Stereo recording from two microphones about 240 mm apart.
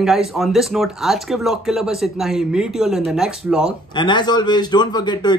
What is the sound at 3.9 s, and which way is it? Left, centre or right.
A man's voice, centre.